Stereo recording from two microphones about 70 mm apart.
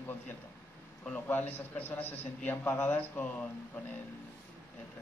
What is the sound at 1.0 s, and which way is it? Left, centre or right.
A man's voice, left.